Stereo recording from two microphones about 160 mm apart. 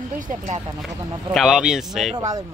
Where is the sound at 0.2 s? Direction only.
55° right (ahead or behind).